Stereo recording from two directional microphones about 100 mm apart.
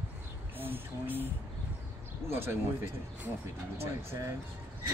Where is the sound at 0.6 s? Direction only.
20° right (ahead or behind).